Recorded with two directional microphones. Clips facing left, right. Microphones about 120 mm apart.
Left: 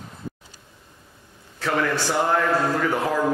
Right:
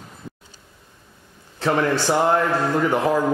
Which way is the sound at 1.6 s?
25° right (ahead or behind).